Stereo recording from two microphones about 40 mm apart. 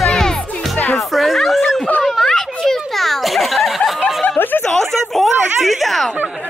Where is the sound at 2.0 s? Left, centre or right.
Centre.